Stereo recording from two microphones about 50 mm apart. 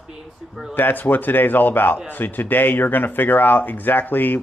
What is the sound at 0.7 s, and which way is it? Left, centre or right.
A man's voice, left.